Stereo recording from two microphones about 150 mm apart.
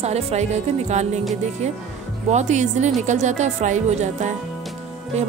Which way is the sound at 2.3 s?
50° right (ahead or behind).